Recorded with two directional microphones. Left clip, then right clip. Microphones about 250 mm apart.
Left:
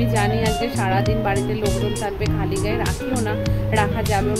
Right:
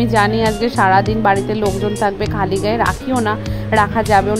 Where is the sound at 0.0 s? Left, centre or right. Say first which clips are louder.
Right 7 dB; right.